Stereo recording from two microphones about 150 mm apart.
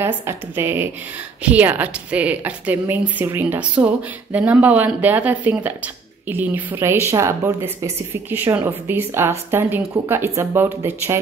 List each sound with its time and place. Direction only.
0.0 s a woman's voice: 15° right (ahead or behind)